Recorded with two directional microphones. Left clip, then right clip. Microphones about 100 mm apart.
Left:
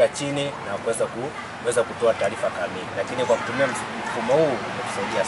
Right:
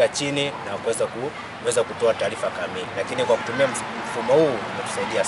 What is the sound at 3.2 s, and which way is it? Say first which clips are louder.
Speech: right 1 dB; 25° right (ahead or behind).